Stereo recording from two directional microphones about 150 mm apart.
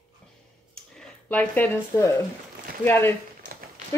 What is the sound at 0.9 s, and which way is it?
Speech, 5° left (ahead or behind).